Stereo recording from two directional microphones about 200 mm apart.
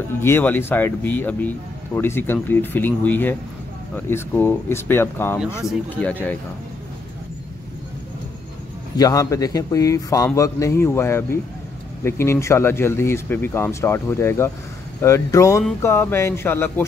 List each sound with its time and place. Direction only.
0.2 s speech: 10° left (ahead or behind)
8.9 s speech: 15° left (ahead or behind)